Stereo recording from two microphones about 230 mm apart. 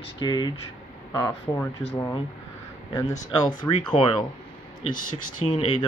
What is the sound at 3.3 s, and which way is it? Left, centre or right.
Speech, centre.